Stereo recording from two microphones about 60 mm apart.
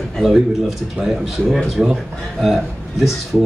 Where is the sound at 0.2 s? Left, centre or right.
Centre.